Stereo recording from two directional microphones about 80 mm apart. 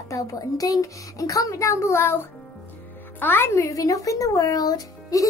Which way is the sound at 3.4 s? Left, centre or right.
Left.